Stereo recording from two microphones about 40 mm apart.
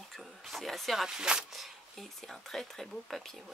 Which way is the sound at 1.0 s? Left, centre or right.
Centre.